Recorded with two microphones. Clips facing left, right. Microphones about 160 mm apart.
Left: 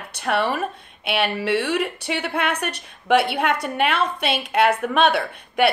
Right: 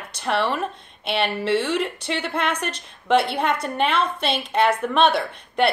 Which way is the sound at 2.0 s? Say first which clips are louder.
Left 1 dB; 60° left (ahead or behind).